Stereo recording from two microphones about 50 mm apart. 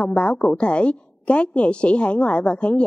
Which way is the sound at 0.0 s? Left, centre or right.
Left.